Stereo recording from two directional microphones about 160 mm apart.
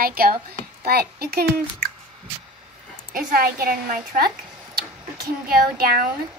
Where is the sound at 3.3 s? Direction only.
70° right (ahead or behind).